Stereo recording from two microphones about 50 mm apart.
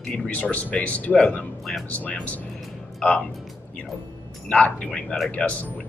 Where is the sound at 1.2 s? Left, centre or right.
Centre.